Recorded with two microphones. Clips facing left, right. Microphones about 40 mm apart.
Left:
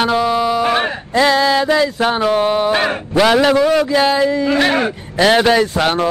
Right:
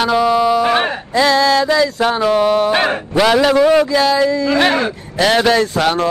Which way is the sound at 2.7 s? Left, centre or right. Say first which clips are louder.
Right 1 dB; centre.